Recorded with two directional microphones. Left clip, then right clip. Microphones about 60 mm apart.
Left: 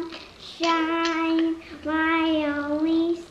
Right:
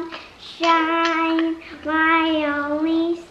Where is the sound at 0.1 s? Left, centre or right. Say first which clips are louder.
Right 4 dB; right.